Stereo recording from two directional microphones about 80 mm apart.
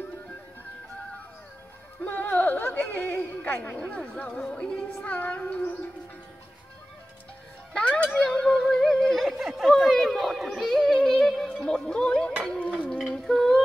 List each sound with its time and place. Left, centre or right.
2.0 s a sound: left
3.7 s speech: centre
5.0 s child singing: centre
7.7 s music: centre
11.4 s speech: centre
12.4 s a sound: centre